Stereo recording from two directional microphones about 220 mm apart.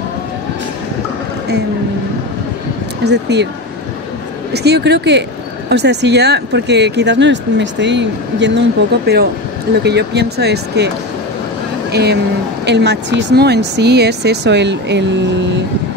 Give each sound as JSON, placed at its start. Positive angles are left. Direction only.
{"t": 3.1, "sound": "speech", "side_deg": -50}
{"t": 4.6, "sound": "speech", "side_deg": -50}
{"t": 11.9, "sound": "speech", "side_deg": -50}